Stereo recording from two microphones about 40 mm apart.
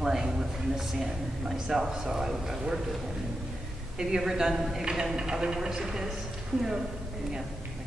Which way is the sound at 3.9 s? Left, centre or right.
Centre.